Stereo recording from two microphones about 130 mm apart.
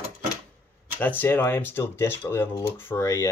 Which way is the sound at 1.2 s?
20° left (ahead or behind).